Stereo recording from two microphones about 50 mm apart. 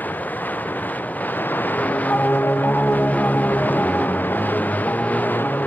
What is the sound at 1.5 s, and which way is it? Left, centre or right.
Music, left.